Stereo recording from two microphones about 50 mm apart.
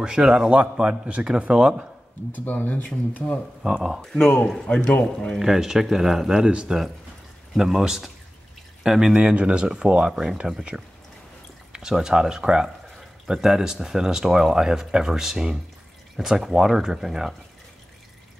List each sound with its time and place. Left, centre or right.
0.0 s speech: centre
2.3 s speech: left
3.6 s speech: centre
4.4 s a man's voice: centre
4.8 s speech: left
5.4 s speech: centre
7.5 s speech: centre
9.1 s speech: right; by 17.4 s centre